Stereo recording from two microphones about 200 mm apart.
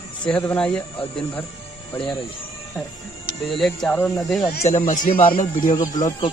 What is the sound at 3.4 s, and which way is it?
Speech, centre (ahead or behind).